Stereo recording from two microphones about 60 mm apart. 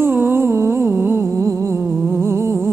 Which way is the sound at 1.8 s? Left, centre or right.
Right.